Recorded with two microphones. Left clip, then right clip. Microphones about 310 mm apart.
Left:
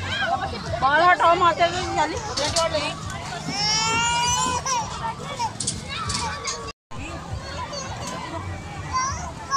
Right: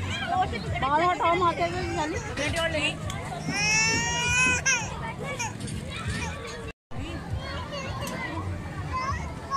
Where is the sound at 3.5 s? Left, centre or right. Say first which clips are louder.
Left 2 dB; centre.